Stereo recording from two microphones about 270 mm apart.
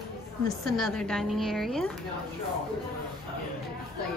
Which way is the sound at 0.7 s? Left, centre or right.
Centre.